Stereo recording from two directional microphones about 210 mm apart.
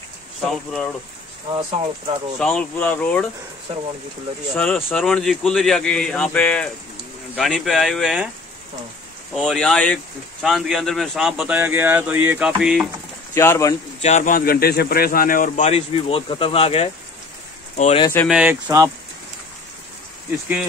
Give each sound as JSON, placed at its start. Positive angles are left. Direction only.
{"t": 0.5, "sound": "speech", "side_deg": 0}
{"t": 1.5, "sound": "speech", "side_deg": -25}
{"t": 2.3, "sound": "speech", "side_deg": 5}
{"t": 4.6, "sound": "speech", "side_deg": 5}
{"t": 9.3, "sound": "speech", "side_deg": 0}
{"t": 13.3, "sound": "speech", "side_deg": 10}
{"t": 14.0, "sound": "speech", "side_deg": 35}
{"t": 18.3, "sound": "speech", "side_deg": -5}